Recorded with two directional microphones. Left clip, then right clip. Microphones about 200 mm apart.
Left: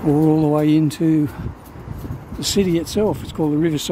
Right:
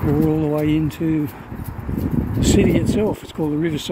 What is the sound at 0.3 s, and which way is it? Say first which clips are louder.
Speech: left 3 dB; 20° left (ahead or behind).